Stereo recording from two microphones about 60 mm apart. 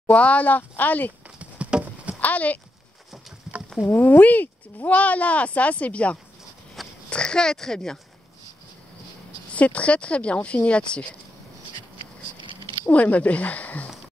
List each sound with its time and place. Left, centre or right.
0.1 s speech: left
1.4 s patter: centre
2.1 s clip-clop: left
3.9 s speech: left; by 8.0 s centre
9.6 s speech: left
12.9 s speech: left